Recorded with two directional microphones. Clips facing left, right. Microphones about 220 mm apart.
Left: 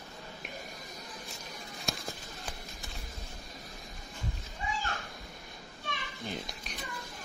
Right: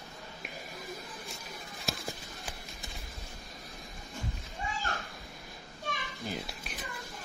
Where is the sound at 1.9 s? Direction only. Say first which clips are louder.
Right 1 dB; centre (ahead or behind).